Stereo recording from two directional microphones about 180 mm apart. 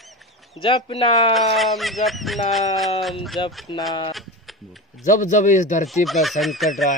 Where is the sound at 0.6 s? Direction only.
30° left (ahead or behind).